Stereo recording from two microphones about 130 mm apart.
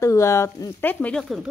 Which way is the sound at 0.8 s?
10° left (ahead or behind).